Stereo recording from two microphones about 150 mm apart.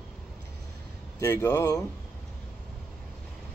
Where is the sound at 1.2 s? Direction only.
15° left (ahead or behind).